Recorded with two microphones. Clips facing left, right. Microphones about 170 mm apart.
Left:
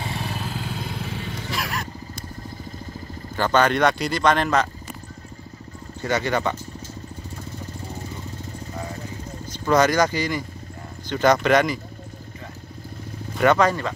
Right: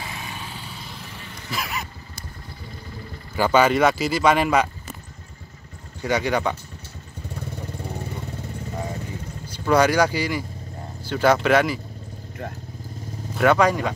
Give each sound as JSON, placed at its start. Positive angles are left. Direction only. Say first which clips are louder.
{"t": 0.1, "sound": "vehicle", "louder": "left 5 dB", "side_deg": 40}
{"t": 0.7, "sound": "motorcycle", "louder": "left 8 dB", "side_deg": 70}
{"t": 1.5, "sound": "a sound", "louder": "right 1 dB", "side_deg": 0}
{"t": 3.3, "sound": "speech", "louder": "right 2 dB", "side_deg": -10}
{"t": 6.0, "sound": "speech", "louder": "right 1 dB", "side_deg": -10}
{"t": 9.5, "sound": "speech", "louder": "even", "side_deg": -10}
{"t": 13.4, "sound": "speech", "louder": "even", "side_deg": -10}